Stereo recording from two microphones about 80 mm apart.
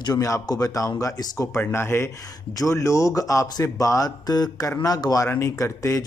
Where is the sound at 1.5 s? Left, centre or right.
Left.